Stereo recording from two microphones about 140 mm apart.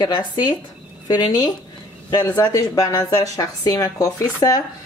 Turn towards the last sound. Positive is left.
turn(degrees=25)  # may be behind; listen again after turning